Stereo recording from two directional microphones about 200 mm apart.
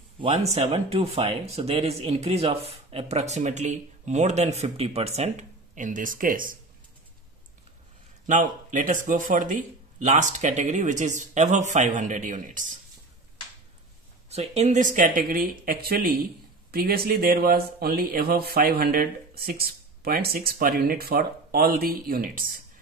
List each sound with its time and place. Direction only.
0.2 s speech: 30° right (ahead or behind)
8.3 s speech: 40° right (ahead or behind)
14.3 s speech: 35° right (ahead or behind)